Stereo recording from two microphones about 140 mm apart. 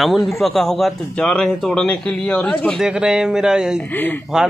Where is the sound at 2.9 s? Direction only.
5° right (ahead or behind).